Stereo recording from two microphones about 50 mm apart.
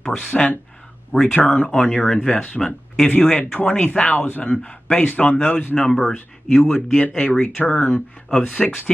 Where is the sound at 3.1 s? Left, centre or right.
Left.